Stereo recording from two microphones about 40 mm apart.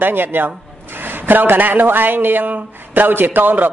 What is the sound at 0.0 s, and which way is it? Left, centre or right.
Speech, right.